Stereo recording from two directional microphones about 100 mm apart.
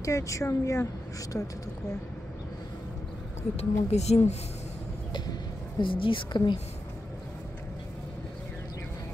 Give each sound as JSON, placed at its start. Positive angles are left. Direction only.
{"t": 0.0, "sound": "speech", "side_deg": 35}
{"t": 3.5, "sound": "speech", "side_deg": 90}
{"t": 5.8, "sound": "a woman's voice", "side_deg": 60}